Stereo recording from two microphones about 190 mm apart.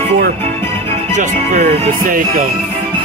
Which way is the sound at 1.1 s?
40° right (ahead or behind).